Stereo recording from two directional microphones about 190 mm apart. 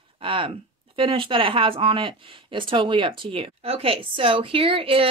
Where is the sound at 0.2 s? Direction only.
25° right (ahead or behind).